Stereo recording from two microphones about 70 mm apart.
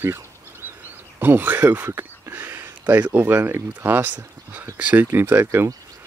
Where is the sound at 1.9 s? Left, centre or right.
Right.